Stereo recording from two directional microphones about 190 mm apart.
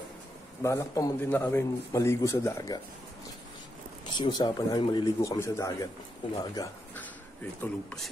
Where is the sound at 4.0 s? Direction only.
25° left (ahead or behind).